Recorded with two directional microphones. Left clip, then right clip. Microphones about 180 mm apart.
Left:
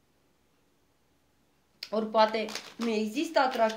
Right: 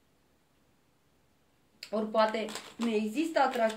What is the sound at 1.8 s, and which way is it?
Speech, 40° left (ahead or behind).